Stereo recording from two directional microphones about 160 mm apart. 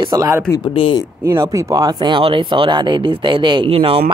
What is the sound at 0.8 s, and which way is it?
Speech, 35° left (ahead or behind).